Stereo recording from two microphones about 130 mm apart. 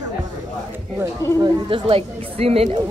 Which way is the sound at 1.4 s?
45° right (ahead or behind).